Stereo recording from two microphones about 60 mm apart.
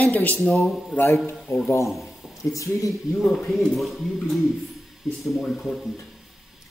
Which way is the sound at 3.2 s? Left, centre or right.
Centre.